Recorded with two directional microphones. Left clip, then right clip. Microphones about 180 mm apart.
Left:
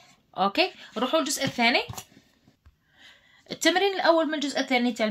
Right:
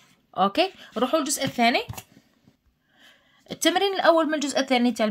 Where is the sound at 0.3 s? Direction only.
35° right (ahead or behind).